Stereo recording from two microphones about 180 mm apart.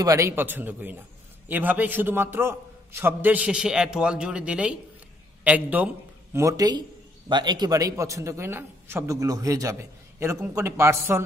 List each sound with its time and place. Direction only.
0.0 s a man's voice: 15° right (ahead or behind)